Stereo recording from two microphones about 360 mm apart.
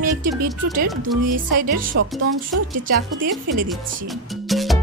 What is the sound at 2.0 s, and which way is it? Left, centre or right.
Speech, right.